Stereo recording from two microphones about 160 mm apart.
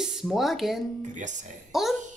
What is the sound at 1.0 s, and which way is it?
Speech, 50° right (ahead or behind).